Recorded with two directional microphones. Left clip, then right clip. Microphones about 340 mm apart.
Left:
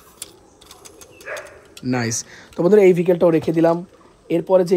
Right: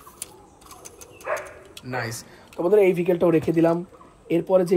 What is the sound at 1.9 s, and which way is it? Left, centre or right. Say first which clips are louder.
Speech: left 7 dB; centre.